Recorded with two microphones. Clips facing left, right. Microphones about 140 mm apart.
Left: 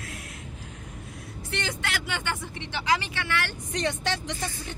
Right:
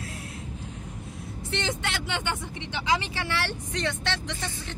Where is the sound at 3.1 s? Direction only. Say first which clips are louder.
Even; 30° right (ahead or behind).